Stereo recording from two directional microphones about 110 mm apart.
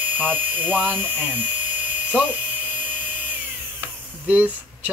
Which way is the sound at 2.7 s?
15° right (ahead or behind).